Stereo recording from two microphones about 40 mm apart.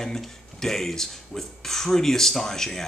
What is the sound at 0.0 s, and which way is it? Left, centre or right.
Speech, centre.